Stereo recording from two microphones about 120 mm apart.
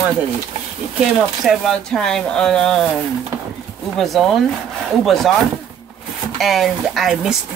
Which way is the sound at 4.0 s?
Centre (ahead or behind).